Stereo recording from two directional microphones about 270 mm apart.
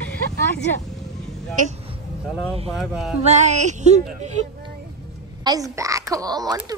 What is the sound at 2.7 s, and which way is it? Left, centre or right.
Speech, centre.